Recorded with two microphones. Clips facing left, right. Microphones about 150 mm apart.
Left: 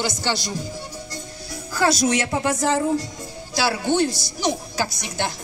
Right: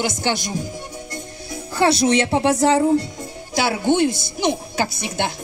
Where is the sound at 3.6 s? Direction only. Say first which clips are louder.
Right 2 dB; 20° right (ahead or behind).